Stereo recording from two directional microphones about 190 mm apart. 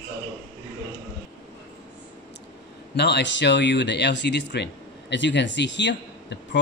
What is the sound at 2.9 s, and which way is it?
Speech, 65° left (ahead or behind).